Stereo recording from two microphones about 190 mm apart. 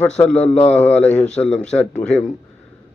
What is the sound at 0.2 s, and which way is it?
A man's voice, 5° left (ahead or behind).